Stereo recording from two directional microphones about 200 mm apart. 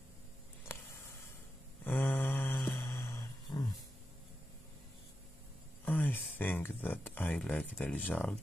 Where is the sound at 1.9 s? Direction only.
10° left (ahead or behind).